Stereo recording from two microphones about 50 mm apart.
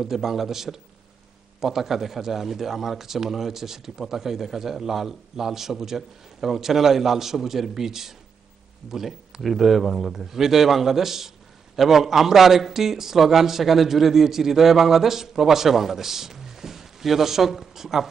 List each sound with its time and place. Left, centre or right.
0.0 s a man's voice: centre